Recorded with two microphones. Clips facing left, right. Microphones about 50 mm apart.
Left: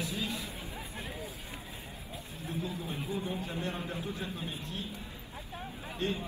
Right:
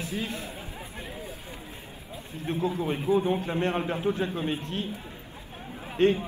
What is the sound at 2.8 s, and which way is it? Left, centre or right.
A man's voice, right.